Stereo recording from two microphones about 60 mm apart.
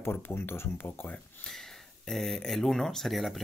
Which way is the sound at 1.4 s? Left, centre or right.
Centre.